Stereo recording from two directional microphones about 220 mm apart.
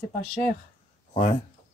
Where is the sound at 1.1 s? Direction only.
35° left (ahead or behind).